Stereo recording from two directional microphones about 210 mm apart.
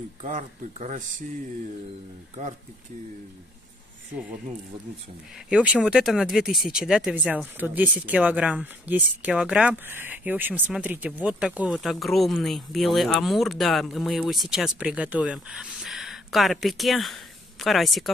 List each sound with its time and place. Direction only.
0.2 s speech: 35° right (ahead or behind)
5.5 s speech: 5° right (ahead or behind)